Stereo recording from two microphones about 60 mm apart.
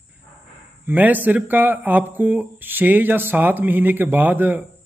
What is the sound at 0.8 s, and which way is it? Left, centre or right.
Speech, right.